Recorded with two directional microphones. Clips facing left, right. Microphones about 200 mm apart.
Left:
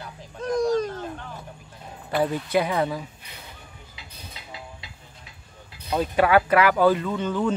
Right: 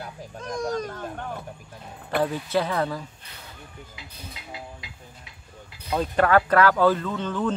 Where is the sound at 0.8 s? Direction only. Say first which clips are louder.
Left 1 dB; 55° right (ahead or behind).